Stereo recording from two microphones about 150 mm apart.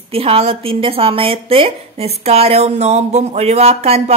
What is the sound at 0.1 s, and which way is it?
A woman's voice, 40° right (ahead or behind).